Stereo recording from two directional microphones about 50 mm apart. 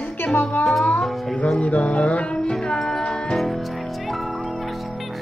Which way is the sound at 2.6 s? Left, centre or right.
Centre.